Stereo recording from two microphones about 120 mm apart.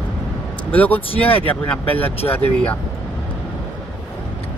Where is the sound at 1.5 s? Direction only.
15° left (ahead or behind).